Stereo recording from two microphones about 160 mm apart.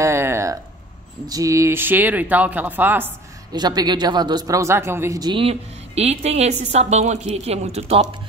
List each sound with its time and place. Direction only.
0.0 s a sound: 15° right (ahead or behind)
1.2 s speech: 20° right (ahead or behind)
3.5 s speech: 25° right (ahead or behind)
5.3 s a woman's voice: 35° right (ahead or behind)